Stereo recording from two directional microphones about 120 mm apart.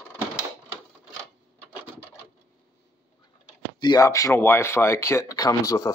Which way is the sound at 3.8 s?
35° left (ahead or behind).